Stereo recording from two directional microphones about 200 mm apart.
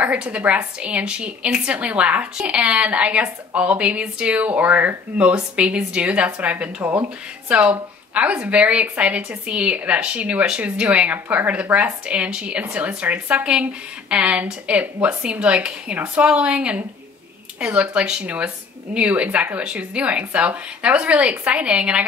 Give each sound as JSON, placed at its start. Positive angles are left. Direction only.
{"t": 0.0, "sound": "a woman's voice", "side_deg": -5}